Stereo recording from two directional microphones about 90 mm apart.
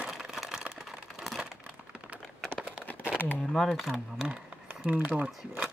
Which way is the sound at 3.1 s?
20° left (ahead or behind).